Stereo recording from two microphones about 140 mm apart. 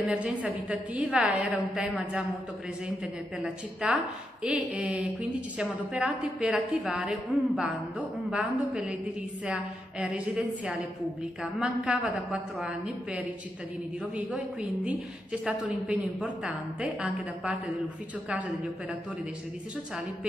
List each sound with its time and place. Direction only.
0.1 s a woman's voice: 10° right (ahead or behind)
3.4 s a woman's voice: 5° right (ahead or behind)